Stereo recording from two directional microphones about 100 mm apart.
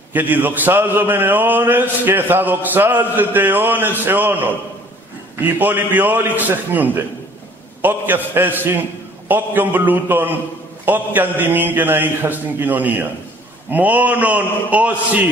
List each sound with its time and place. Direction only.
0.1 s a man's voice: 20° right (ahead or behind)